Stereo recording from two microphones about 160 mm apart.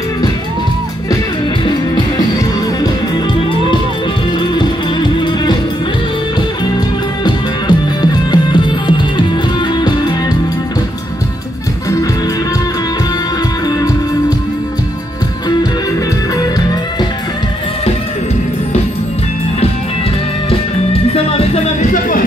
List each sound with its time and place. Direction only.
1.7 s music: 25° left (ahead or behind)
4.4 s music: 30° left (ahead or behind)
7.2 s music: 25° left (ahead or behind)
13.7 s music: 25° left (ahead or behind)
20.4 s music: 35° left (ahead or behind)